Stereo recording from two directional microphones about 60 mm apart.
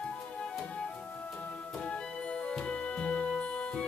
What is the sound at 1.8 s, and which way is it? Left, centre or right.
Music, centre.